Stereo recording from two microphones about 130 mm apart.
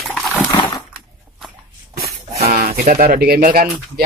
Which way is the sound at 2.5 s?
75° right (ahead or behind).